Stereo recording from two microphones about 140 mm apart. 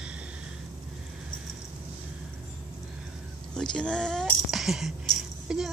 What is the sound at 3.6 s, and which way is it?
Speech, 5° left (ahead or behind).